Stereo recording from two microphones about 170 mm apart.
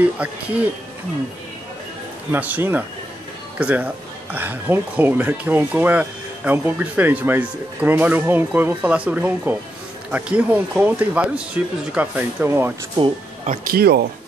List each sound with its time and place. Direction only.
0.2 s speech: 10° right (ahead or behind)
2.3 s speech: 10° right (ahead or behind)
13.5 s speech: 60° right (ahead or behind)